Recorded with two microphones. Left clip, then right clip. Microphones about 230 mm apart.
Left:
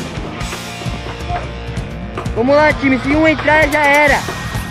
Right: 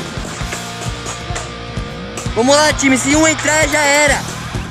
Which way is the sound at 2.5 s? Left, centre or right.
Right.